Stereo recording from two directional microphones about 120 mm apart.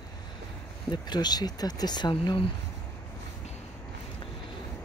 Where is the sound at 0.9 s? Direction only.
35° left (ahead or behind).